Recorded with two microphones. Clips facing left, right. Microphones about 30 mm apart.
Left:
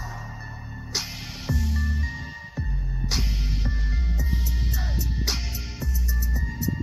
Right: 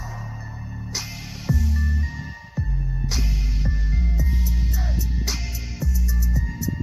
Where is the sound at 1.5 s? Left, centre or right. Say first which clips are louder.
Right 3 dB; left.